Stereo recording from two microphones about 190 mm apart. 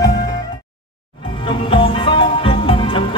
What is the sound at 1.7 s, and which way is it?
Music, 25° left (ahead or behind).